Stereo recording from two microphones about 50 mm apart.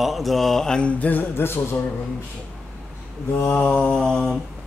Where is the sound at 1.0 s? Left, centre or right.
Left.